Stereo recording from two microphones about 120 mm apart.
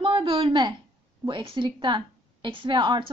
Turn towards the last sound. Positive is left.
turn(degrees=-40)  # may be behind; listen again after turning